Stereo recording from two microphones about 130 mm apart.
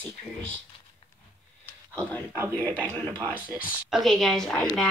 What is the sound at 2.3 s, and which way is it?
Speech, 20° right (ahead or behind).